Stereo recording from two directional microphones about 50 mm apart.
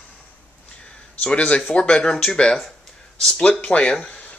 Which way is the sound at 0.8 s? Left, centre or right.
Left.